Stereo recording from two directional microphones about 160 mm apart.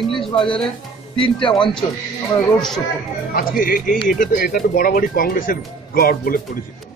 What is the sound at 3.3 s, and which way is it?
Speech, 65° left (ahead or behind).